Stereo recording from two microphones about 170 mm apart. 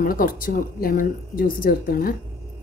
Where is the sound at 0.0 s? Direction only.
55° left (ahead or behind).